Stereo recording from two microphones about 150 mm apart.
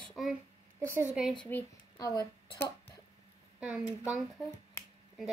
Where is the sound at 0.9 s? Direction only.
10° right (ahead or behind).